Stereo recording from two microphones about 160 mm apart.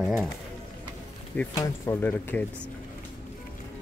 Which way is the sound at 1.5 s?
20° left (ahead or behind).